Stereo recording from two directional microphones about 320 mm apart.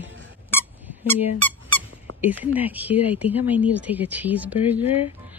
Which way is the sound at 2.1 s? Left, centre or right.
Right.